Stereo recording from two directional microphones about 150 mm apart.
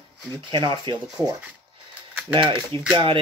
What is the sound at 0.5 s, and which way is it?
Speech, 30° right (ahead or behind).